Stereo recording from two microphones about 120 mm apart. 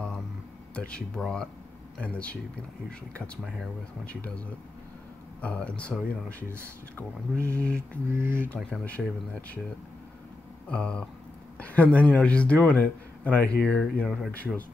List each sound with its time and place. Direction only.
0.7 s speech: 10° left (ahead or behind)
7.5 s speech: 10° left (ahead or behind)
8.2 s speech: 20° right (ahead or behind)
8.5 s speech: 10° left (ahead or behind)
10.7 s speech: 10° left (ahead or behind)